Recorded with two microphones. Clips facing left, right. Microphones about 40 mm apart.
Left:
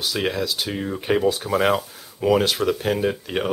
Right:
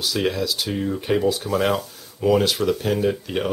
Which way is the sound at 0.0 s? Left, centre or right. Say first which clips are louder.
Right 1 dB; centre.